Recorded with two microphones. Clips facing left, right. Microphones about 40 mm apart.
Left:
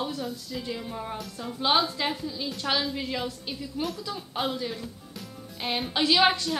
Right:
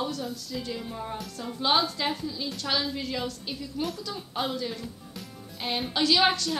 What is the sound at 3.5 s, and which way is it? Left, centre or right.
A woman's voice, centre.